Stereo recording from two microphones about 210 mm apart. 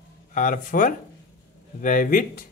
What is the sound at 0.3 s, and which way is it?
Speech, 40° left (ahead or behind).